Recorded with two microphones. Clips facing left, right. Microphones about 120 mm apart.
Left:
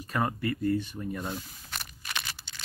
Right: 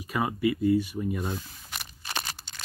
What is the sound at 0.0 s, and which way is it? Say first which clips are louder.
Speech: right 3 dB; 10° right (ahead or behind).